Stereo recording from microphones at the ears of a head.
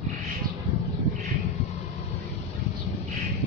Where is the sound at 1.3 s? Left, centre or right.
Left.